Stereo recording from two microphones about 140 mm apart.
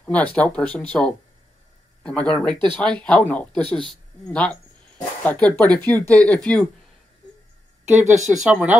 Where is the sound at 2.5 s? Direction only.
35° right (ahead or behind).